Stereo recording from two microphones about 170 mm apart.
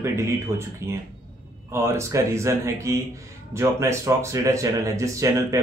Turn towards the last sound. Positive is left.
turn(degrees=-15)  # may be behind; listen again after turning